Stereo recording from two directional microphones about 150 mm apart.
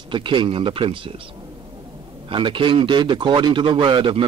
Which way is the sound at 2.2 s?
35° right (ahead or behind).